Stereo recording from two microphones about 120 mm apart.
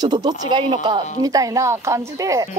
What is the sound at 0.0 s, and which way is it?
Speech, 35° right (ahead or behind).